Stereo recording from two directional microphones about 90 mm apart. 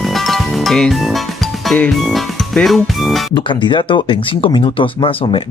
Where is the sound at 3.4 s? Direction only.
65° left (ahead or behind).